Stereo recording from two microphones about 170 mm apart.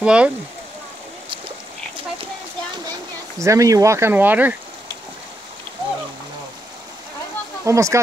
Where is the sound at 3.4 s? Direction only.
20° right (ahead or behind).